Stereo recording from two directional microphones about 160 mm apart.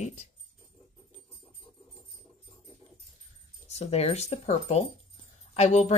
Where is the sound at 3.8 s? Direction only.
40° left (ahead or behind).